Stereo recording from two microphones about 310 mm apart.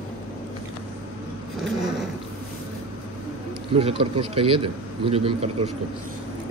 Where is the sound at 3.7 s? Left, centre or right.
Centre.